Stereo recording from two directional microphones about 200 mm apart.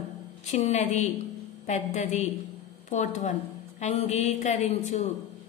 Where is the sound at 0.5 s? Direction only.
30° left (ahead or behind).